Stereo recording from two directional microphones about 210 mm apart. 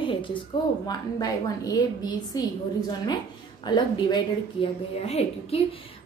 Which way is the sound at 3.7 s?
20° left (ahead or behind).